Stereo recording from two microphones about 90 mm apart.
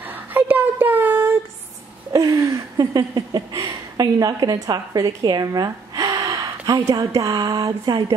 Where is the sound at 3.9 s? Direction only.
45° right (ahead or behind).